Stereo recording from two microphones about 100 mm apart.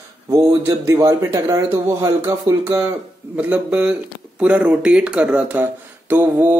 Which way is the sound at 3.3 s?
15° right (ahead or behind).